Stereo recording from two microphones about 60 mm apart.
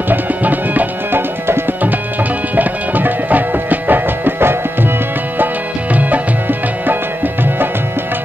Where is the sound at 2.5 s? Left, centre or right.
Right.